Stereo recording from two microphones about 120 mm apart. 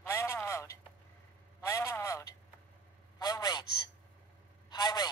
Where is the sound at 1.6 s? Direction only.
25° left (ahead or behind).